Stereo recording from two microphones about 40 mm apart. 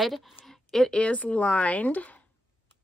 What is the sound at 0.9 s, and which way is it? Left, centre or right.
Speech, left.